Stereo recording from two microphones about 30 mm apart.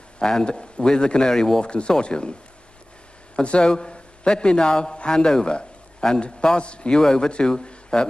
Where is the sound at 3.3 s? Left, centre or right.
Left.